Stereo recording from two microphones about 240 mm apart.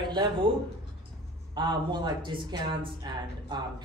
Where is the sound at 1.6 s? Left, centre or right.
Centre.